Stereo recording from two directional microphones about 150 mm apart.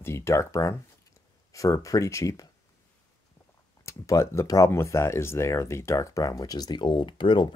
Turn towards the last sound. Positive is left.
turn(degrees=35)  # may be behind; listen again after turning